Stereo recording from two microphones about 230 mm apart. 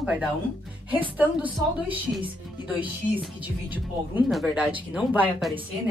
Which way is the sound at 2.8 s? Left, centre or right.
Centre.